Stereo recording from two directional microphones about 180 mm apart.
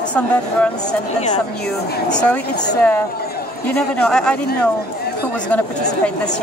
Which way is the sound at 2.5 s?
20° left (ahead or behind).